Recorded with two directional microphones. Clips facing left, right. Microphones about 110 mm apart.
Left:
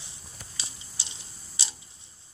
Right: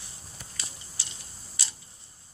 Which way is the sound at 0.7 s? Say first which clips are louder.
Even; 20° left (ahead or behind).